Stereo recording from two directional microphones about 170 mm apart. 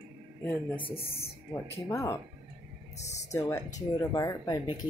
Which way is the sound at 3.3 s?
20° left (ahead or behind).